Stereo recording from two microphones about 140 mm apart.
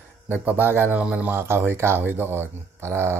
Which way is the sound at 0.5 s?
15° right (ahead or behind).